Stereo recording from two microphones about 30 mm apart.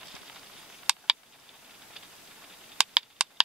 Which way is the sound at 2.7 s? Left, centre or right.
Right.